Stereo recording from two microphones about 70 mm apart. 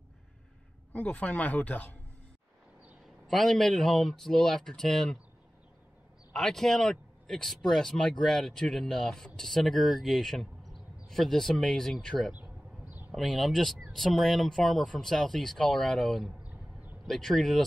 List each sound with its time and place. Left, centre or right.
0.9 s speech: left
3.3 s speech: centre
6.3 s speech: centre